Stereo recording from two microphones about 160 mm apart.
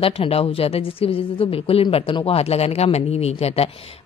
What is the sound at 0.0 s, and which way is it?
A woman's voice, 35° left (ahead or behind).